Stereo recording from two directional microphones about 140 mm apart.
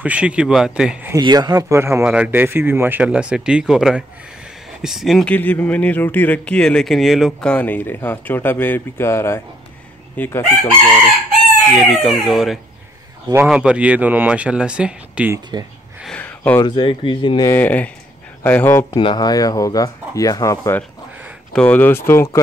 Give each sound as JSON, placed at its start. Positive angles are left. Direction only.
{"t": 0.0, "sound": "speech", "side_deg": -10}
{"t": 1.1, "sound": "speech", "side_deg": -30}
{"t": 2.0, "sound": "speech", "side_deg": -10}
{"t": 5.3, "sound": "speech", "side_deg": 10}
{"t": 7.4, "sound": "speech", "side_deg": 10}
{"t": 12.0, "sound": "speech", "side_deg": 0}
{"t": 16.2, "sound": "a sound", "side_deg": 10}
{"t": 16.6, "sound": "speech", "side_deg": 35}
{"t": 17.5, "sound": "speech", "side_deg": 15}
{"t": 18.9, "sound": "speech", "side_deg": 30}